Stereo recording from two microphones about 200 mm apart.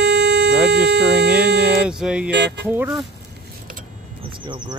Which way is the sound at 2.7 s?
10° right (ahead or behind).